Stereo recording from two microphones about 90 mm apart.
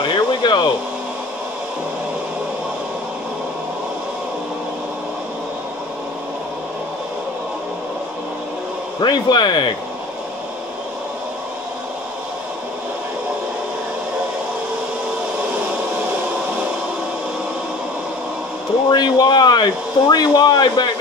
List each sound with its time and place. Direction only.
0.0 s a sound: 55° left (ahead or behind)
9.0 s speech: 55° left (ahead or behind)
18.9 s speech: 50° left (ahead or behind)